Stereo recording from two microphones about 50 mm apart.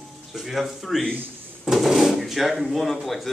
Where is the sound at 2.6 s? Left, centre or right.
Centre.